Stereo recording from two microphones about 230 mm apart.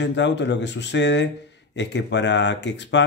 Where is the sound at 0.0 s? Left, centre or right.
Left.